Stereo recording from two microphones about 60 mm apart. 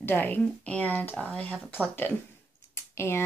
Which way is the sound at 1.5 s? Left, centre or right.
Centre.